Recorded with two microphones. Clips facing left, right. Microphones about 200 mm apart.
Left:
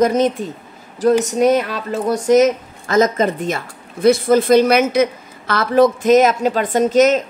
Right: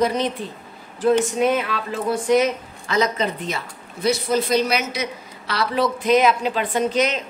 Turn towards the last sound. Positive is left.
turn(degrees=45)  # may be behind; listen again after turning